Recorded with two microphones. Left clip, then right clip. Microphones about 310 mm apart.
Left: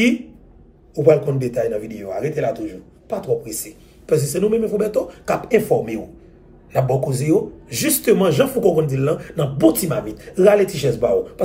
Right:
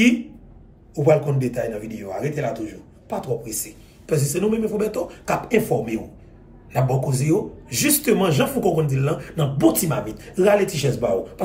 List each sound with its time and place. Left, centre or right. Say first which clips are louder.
0.9 s a man's voice: left 3 dB; centre